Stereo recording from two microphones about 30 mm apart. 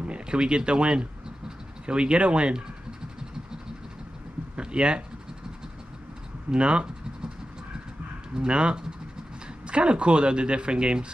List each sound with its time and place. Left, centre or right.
0.0 s speech: right
4.6 s speech: right
6.5 s speech: right
8.4 s speech: right